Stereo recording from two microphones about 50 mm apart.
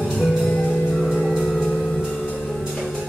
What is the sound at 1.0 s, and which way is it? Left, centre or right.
Music, centre.